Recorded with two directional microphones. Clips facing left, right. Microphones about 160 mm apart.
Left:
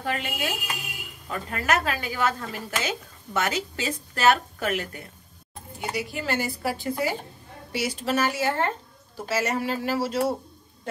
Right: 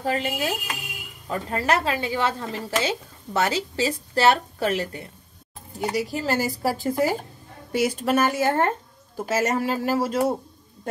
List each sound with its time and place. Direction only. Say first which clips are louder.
0.0 s a woman's voice: right 4 dB; 35° right (ahead or behind)